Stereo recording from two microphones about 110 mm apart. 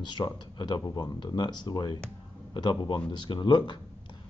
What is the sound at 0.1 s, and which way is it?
Speech, 45° left (ahead or behind).